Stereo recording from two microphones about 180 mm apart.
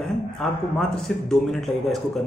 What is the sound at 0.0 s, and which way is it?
Speech, centre (ahead or behind).